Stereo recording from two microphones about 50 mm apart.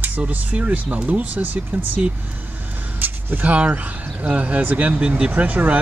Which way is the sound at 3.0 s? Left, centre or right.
Right.